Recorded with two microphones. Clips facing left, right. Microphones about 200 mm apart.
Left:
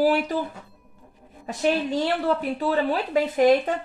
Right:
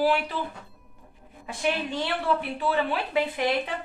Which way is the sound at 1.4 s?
40° left (ahead or behind).